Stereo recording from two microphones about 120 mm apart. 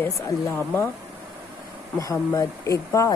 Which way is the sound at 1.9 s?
25° left (ahead or behind).